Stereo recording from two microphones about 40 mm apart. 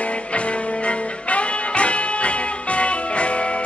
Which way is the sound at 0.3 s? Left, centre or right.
Left.